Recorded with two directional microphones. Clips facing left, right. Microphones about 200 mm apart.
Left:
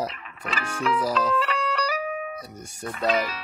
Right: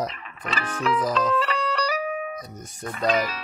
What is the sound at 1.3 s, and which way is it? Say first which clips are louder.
Music: right 1 dB; 35° right (ahead or behind).